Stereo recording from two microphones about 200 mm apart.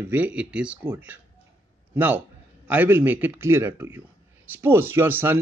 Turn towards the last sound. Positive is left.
turn(degrees=-10)  # may be behind; listen again after turning